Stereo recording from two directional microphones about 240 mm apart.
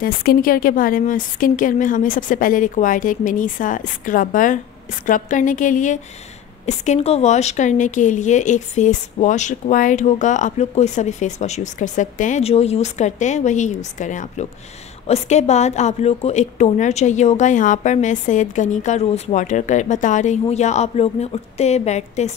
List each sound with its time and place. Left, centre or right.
0.0 s a woman's voice: left